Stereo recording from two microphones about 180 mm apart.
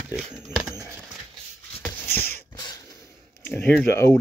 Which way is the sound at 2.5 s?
20° left (ahead or behind).